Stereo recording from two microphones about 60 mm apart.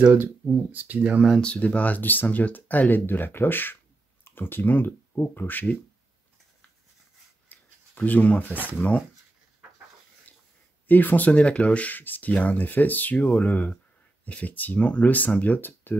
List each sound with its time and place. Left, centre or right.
0.0 s speech: right
1.4 s speech: centre
7.4 s a sound: left
8.7 s speech: left
10.9 s speech: left